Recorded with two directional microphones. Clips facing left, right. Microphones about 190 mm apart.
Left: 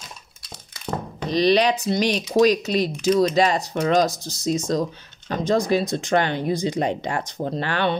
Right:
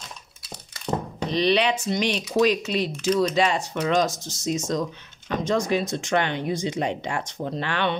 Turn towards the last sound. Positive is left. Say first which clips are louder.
# left 3 dB
turn(degrees=40)  # may be behind; listen again after turning